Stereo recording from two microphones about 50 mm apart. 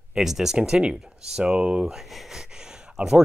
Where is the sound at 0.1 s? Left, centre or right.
Centre.